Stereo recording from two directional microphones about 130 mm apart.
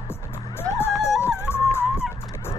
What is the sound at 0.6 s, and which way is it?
Music, 20° left (ahead or behind).